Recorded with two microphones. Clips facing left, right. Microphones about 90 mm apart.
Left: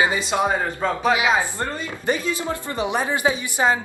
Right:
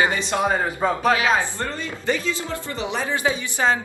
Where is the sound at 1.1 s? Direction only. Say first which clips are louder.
Left 1 dB; 15° left (ahead or behind).